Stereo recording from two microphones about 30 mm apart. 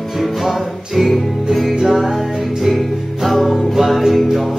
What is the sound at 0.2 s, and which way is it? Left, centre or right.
Music, centre.